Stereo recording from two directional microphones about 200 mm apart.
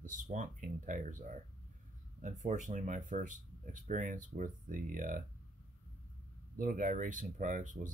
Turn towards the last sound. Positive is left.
turn(degrees=-40)  # may be behind; listen again after turning